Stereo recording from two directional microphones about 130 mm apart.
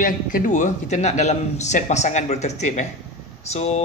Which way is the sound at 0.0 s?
85° left.